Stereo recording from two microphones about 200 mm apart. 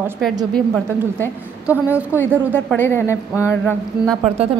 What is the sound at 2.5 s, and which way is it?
Mantra, 10° left (ahead or behind).